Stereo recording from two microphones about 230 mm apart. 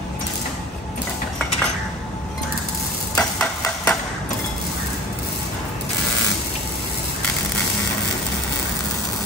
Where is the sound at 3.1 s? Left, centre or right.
Centre.